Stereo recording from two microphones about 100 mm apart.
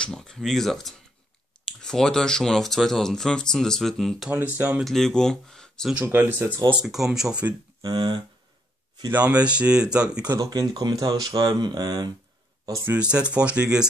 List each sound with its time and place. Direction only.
0.0 s speech: 5° left (ahead or behind)
4.3 s speech: 20° right (ahead or behind)
4.8 s speech: 5° left (ahead or behind)
5.9 s speech: 20° right (ahead or behind)
6.8 s speech: 5° right (ahead or behind)
7.8 s speech: 50° right (ahead or behind)
9.1 s speech: 10° right (ahead or behind)
10.3 s speech: 35° right (ahead or behind)
13.1 s speech: 10° right (ahead or behind)